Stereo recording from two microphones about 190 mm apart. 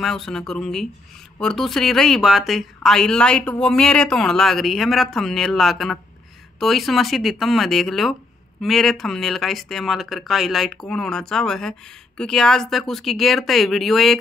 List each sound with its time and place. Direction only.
0.0 s speech: centre (ahead or behind)